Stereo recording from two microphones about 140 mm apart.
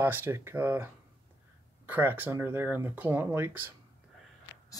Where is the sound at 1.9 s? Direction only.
15° right (ahead or behind).